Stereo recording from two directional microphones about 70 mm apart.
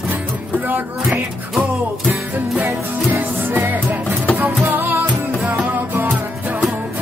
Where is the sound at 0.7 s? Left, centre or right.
Right.